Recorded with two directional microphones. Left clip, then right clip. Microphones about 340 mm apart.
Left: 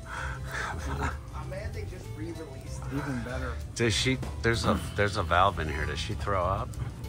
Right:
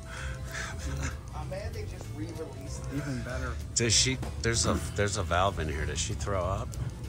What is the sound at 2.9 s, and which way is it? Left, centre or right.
Speech, centre.